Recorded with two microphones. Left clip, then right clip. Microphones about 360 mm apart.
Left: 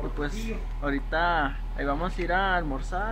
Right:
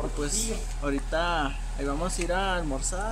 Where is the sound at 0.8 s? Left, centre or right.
Centre.